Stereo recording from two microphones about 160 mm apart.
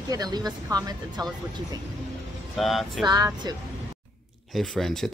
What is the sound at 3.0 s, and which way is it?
Speech, 25° right (ahead or behind).